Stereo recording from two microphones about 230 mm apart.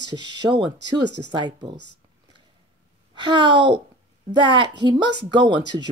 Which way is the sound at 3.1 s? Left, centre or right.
Right.